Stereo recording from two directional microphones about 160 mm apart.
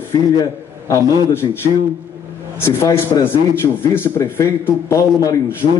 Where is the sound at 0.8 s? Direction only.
20° left (ahead or behind).